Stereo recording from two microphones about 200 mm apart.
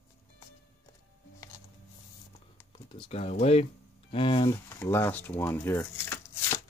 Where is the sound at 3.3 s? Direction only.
35° left (ahead or behind).